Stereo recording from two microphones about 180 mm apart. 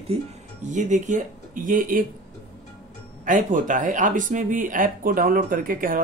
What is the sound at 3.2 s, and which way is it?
Speech, 45° right (ahead or behind).